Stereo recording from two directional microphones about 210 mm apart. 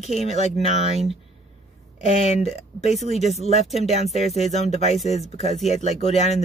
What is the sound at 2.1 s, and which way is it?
Speech, 30° left (ahead or behind).